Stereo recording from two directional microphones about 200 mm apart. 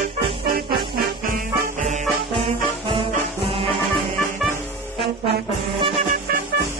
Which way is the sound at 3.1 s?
25° right (ahead or behind).